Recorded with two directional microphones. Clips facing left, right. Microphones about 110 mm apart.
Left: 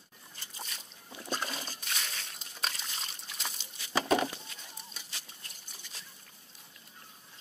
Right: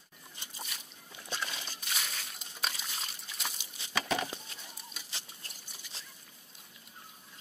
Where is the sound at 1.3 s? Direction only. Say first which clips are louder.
Left 3 dB; 40° left (ahead or behind).